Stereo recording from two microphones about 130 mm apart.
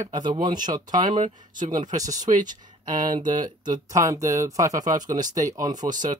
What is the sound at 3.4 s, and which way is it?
Speech, 30° right (ahead or behind).